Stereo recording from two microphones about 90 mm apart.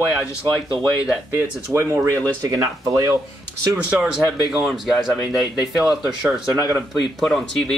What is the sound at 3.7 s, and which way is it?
Speech, 5° right (ahead or behind).